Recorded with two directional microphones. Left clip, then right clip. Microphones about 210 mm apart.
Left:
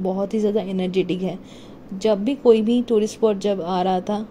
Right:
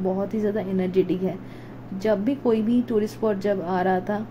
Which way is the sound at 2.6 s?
25° left (ahead or behind).